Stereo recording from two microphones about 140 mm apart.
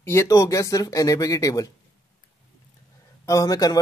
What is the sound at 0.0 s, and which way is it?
Speech, 20° left (ahead or behind).